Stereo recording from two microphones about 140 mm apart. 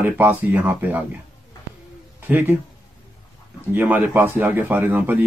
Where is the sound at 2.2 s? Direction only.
15° right (ahead or behind).